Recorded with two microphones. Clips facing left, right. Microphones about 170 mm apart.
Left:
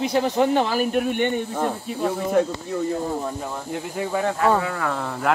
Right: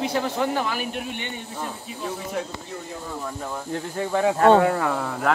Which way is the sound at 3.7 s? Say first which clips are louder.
Even; 10° left (ahead or behind).